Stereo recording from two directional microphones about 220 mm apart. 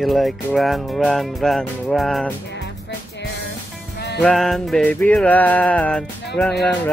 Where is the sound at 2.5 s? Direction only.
50° left (ahead or behind).